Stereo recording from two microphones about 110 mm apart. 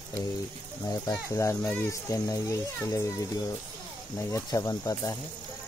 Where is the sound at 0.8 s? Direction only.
35° left (ahead or behind).